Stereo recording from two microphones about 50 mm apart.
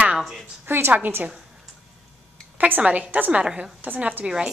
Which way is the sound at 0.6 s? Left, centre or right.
Right.